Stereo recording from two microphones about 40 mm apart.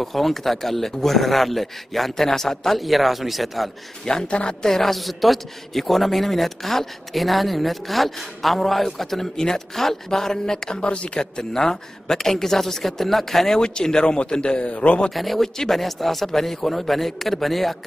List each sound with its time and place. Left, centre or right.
0.0 s a man's voice: centre
2.8 s a man's voice: centre
4.3 s a man's voice: left
4.6 s a man's voice: centre; by 11.2 s left
11.3 s a man's voice: centre
13.6 s a man's voice: centre
15.0 s a man's voice: centre